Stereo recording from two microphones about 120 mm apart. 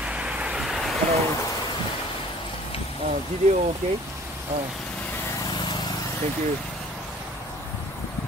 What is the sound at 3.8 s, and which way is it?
Speech, 60° right (ahead or behind).